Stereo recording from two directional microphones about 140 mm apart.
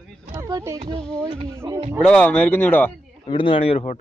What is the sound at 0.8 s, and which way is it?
Speech, 40° right (ahead or behind).